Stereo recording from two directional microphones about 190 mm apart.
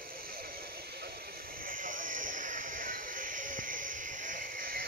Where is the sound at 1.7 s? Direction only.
45° right (ahead or behind).